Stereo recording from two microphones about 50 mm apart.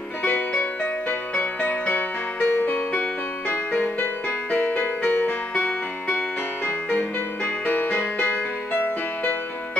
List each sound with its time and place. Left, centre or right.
0.2 s music: left
3.4 s music: left
7.6 s music: left